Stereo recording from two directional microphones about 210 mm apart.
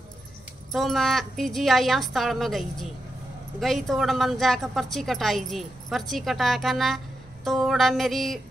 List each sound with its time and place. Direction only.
0.7 s a woman's voice: centre (ahead or behind)